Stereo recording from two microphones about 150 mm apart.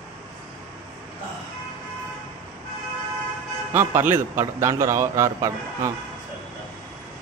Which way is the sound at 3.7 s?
15° right (ahead or behind).